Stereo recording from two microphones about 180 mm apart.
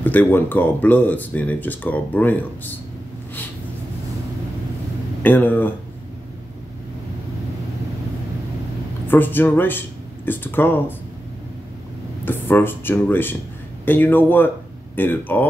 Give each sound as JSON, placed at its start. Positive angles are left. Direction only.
{"t": 0.0, "sound": "speech", "side_deg": 10}
{"t": 5.2, "sound": "speech", "side_deg": 10}
{"t": 9.0, "sound": "speech", "side_deg": 10}
{"t": 12.3, "sound": "speech", "side_deg": 10}